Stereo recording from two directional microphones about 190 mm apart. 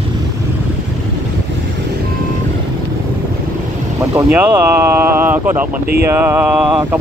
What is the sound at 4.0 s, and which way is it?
Vehicle, 15° right (ahead or behind).